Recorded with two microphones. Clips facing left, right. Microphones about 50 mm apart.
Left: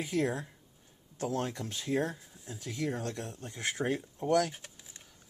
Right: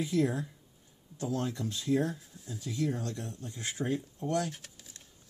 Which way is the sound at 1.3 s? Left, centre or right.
Left.